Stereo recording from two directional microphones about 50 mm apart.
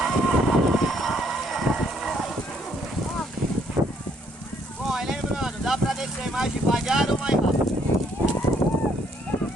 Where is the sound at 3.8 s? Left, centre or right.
Right.